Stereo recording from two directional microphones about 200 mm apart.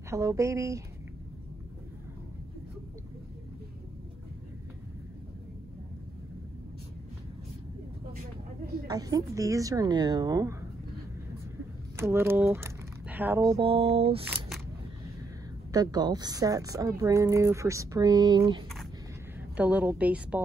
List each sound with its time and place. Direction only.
0.1 s a woman's voice: 15° right (ahead or behind)
8.8 s a woman's voice: 20° right (ahead or behind)
12.0 s speech: 10° right (ahead or behind); by 14.2 s 30° right (ahead or behind)
14.2 s single-lens reflex camera: 5° right (ahead or behind)
15.7 s a woman's voice: 20° right (ahead or behind)
19.5 s a woman's voice: 10° right (ahead or behind)